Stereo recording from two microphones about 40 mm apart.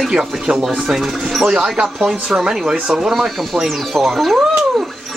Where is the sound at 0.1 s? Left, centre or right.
Right.